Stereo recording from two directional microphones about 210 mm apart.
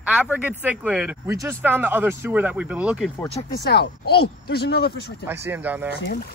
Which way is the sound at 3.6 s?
50° left (ahead or behind).